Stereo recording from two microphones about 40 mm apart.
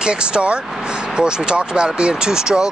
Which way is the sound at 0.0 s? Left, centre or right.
Right.